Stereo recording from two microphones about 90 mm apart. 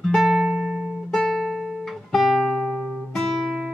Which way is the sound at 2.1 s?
Centre (ahead or behind).